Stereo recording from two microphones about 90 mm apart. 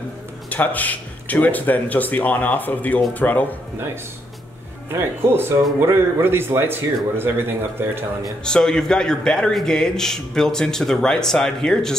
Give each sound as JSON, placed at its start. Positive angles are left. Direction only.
{"t": 0.5, "sound": "a man's voice", "side_deg": 20}
{"t": 4.9, "sound": "speech", "side_deg": -25}
{"t": 8.5, "sound": "a man's voice", "side_deg": 10}